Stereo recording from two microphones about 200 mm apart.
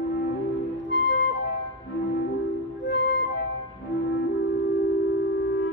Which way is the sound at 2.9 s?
60° left (ahead or behind).